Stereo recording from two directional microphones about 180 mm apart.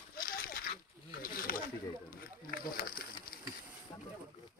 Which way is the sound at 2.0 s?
50° left (ahead or behind).